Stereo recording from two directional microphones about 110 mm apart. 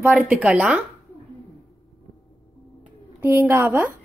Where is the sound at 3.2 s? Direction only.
20° right (ahead or behind).